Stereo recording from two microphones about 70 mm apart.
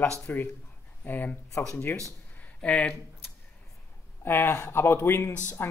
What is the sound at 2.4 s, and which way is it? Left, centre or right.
Speech, centre.